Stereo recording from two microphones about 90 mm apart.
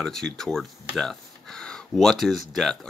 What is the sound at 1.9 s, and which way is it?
Speech, centre (ahead or behind).